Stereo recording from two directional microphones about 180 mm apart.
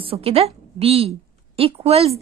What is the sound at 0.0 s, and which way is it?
A woman's voice, 30° right (ahead or behind).